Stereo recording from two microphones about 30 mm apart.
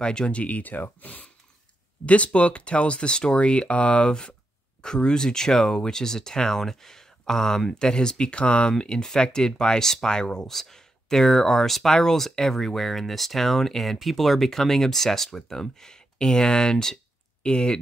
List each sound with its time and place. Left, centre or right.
0.0 s speech: left
0.3 s speech: left
0.6 s speech: left
2.0 s speech: left
6.6 s speech: centre; by 8.7 s left
8.7 s speech: left
10.5 s speech: centre